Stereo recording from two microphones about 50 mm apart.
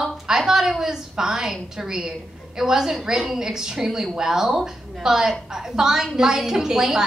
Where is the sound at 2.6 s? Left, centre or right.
Centre.